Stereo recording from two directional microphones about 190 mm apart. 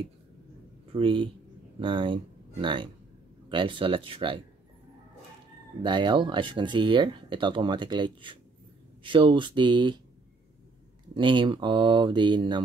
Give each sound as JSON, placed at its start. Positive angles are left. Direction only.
{"t": 0.9, "sound": "speech", "side_deg": -25}
{"t": 5.8, "sound": "speech", "side_deg": -25}
{"t": 11.1, "sound": "speech", "side_deg": -25}